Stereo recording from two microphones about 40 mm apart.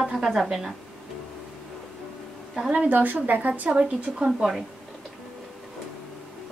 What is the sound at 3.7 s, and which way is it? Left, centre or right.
Speech, right.